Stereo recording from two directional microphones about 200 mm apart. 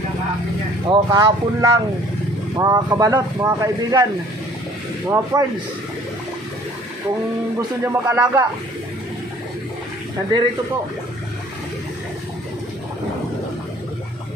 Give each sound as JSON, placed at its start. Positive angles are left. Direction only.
{"t": 0.8, "sound": "speech", "side_deg": -20}
{"t": 5.1, "sound": "speech", "side_deg": -15}
{"t": 7.8, "sound": "speech", "side_deg": -15}